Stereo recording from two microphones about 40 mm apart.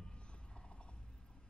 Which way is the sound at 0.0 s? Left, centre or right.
Left.